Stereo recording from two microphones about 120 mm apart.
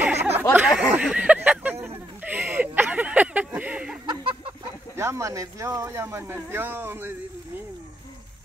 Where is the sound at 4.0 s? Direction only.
45° right (ahead or behind).